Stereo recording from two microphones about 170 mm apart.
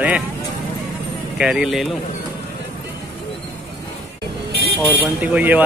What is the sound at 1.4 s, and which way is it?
Speech, 5° right (ahead or behind).